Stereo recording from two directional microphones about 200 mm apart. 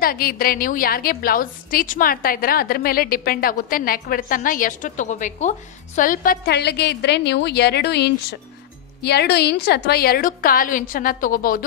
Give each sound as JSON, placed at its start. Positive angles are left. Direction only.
{"t": 0.0, "sound": "a woman's voice", "side_deg": 45}